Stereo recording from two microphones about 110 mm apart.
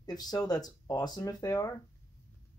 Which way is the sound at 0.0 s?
35° left (ahead or behind).